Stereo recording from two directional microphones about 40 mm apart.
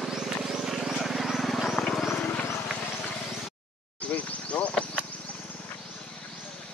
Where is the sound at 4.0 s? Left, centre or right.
Left.